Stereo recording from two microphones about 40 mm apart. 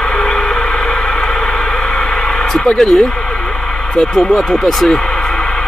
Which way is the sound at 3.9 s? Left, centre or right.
Centre.